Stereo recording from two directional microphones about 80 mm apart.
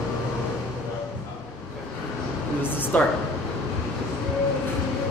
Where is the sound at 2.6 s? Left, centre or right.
Left.